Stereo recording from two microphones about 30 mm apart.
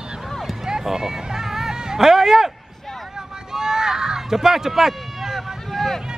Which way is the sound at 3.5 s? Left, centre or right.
Centre.